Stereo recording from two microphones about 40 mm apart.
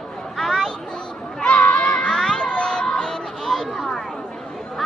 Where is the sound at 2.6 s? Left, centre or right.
Centre.